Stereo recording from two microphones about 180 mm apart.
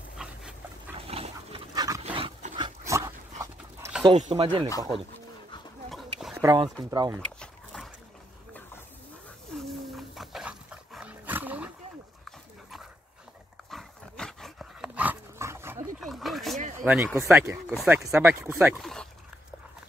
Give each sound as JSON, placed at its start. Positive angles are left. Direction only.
{"t": 0.2, "sound": "dog", "side_deg": -5}
{"t": 0.9, "sound": "dog", "side_deg": -30}
{"t": 1.7, "sound": "dog", "side_deg": -20}
{"t": 4.3, "sound": "speech", "side_deg": -30}
{"t": 4.6, "sound": "speech", "side_deg": 20}
{"t": 5.9, "sound": "a sound", "side_deg": 0}
{"t": 6.3, "sound": "a sound", "side_deg": -15}
{"t": 6.8, "sound": "speech", "side_deg": -20}
{"t": 7.2, "sound": "a sound", "side_deg": 0}
{"t": 9.6, "sound": "dog", "side_deg": 0}
{"t": 13.7, "sound": "dog", "side_deg": 0}
{"t": 16.0, "sound": "a sound", "side_deg": 0}
{"t": 16.8, "sound": "speech", "side_deg": -10}
{"t": 18.8, "sound": "speech", "side_deg": 0}